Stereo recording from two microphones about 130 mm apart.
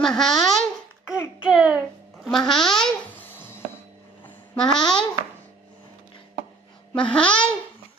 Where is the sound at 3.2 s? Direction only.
15° left (ahead or behind).